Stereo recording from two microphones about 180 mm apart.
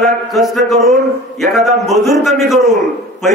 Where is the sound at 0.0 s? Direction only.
Centre (ahead or behind).